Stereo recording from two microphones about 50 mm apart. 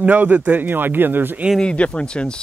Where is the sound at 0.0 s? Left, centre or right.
Right.